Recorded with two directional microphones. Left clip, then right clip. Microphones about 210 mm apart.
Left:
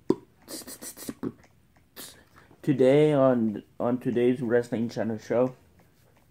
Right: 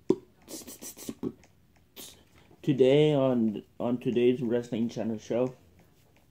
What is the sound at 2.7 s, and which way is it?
Speech, centre (ahead or behind).